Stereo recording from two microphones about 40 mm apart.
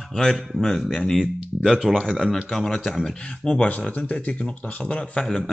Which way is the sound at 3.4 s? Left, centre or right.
Left.